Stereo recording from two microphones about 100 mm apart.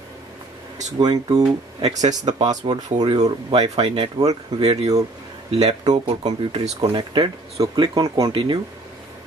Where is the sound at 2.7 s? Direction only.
50° right (ahead or behind); by 4.3 s 80° right.